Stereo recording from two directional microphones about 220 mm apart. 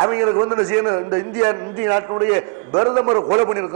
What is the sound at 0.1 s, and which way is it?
A man's voice, 15° right (ahead or behind).